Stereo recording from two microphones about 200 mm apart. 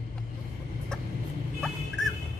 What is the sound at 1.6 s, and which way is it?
Dog, 5° left (ahead or behind).